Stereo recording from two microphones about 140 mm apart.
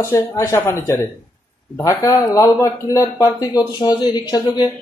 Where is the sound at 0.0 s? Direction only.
20° left (ahead or behind).